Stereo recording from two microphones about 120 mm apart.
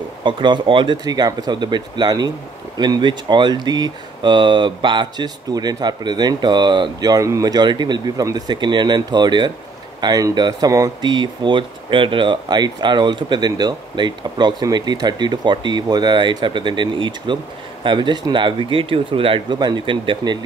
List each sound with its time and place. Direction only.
0.2 s speech: 40° right (ahead or behind)